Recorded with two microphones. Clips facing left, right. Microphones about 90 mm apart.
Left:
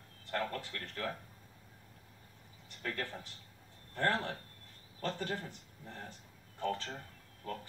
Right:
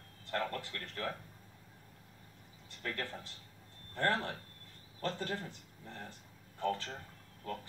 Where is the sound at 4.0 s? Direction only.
20° left (ahead or behind).